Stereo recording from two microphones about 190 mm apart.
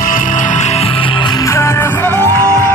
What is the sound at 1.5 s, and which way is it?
Music, 15° left (ahead or behind).